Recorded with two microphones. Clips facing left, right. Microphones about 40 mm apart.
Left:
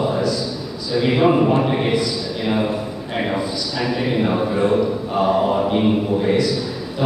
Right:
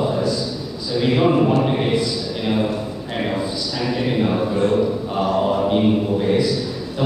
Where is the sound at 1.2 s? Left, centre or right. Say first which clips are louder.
Left 2 dB; left.